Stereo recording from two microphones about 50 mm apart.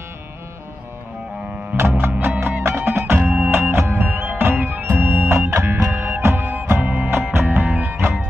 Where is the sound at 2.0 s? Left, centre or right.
Right.